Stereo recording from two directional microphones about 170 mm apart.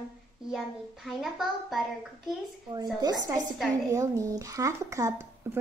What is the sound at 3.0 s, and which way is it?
A woman's voice, 20° right (ahead or behind).